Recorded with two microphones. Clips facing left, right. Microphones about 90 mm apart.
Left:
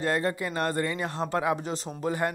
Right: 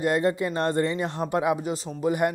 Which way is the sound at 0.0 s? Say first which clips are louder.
Right 4 dB; 20° right (ahead or behind).